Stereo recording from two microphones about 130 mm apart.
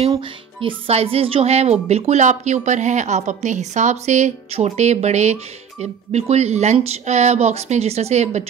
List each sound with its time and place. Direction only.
0.6 s speech: 50° right (ahead or behind)